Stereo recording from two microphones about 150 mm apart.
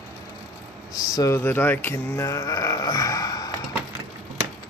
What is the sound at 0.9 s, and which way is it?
Speech, 25° left (ahead or behind).